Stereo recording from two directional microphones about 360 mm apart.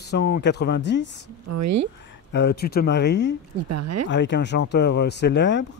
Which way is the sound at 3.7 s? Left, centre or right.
Right.